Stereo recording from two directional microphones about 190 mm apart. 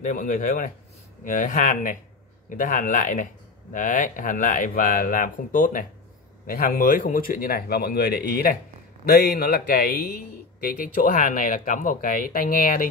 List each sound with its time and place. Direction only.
0.0 s speech: 45° left (ahead or behind)